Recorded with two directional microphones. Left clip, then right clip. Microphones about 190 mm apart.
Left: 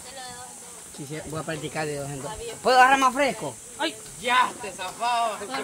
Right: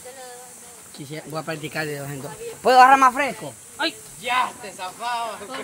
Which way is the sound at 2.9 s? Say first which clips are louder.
Right 5 dB; 20° right (ahead or behind).